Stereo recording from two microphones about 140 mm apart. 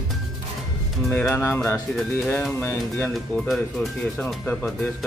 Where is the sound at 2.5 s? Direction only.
15° left (ahead or behind).